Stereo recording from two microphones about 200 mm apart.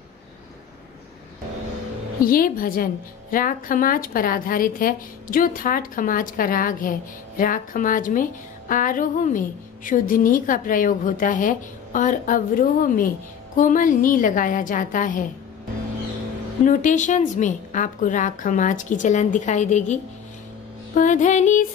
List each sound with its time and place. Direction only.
2.2 s a woman's voice: 45° left (ahead or behind)
16.6 s a woman's voice: 40° left (ahead or behind)